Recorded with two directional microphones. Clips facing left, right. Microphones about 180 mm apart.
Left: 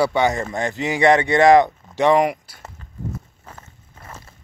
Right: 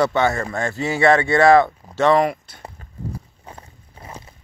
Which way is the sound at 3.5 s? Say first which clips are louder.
Right 2 dB; 30° right (ahead or behind).